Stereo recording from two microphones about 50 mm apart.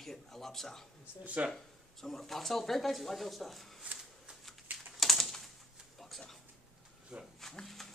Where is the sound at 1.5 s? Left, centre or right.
Centre.